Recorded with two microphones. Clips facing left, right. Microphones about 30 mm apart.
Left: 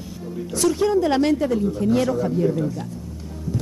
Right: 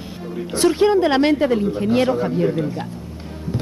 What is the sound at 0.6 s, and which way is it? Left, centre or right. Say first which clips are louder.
Speech: right 4 dB; right.